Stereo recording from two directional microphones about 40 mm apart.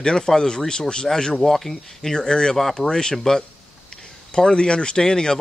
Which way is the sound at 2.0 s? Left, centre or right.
Centre.